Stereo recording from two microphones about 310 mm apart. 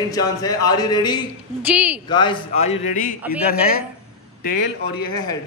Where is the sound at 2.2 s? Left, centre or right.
Centre.